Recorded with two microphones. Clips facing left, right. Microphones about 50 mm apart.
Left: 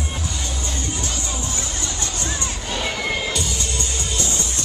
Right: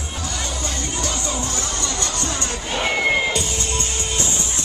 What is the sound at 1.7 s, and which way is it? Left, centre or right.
Music, right.